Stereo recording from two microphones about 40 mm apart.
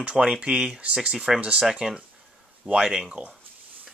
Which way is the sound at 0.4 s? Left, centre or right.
Right.